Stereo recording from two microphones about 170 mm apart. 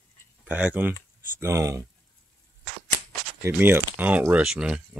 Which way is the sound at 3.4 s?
15° right (ahead or behind).